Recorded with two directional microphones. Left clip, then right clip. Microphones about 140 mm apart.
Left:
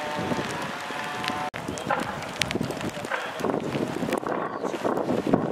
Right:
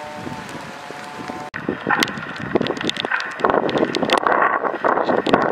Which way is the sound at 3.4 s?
30° right (ahead or behind).